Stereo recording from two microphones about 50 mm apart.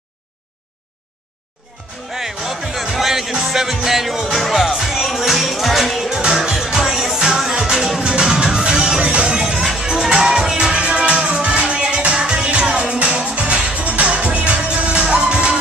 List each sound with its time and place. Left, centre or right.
2.1 s music: centre